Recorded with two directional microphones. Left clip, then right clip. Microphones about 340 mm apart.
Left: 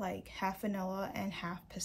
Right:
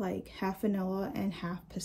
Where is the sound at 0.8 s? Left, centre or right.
Centre.